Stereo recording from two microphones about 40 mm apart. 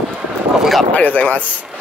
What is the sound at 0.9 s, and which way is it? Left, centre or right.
Speech, left.